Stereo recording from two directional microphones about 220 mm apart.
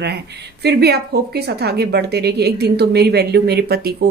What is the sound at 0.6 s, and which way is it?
Speech, 50° right (ahead or behind).